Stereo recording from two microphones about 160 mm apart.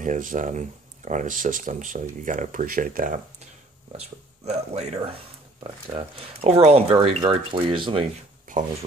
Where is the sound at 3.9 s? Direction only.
45° right (ahead or behind).